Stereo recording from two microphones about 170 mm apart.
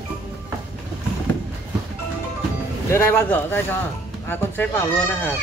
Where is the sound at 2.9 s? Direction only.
15° left (ahead or behind).